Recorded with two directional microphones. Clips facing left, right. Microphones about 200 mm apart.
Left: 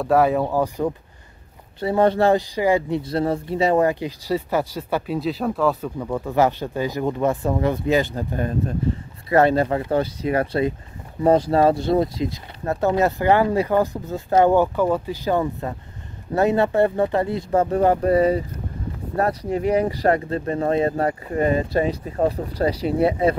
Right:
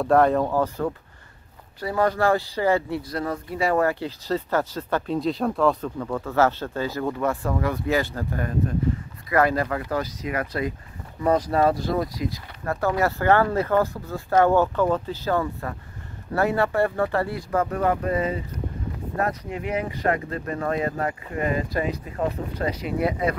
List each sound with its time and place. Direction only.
0.0 s speech: 5° left (ahead or behind)
1.8 s speech: 25° left (ahead or behind)
3.0 s speech: 30° left (ahead or behind)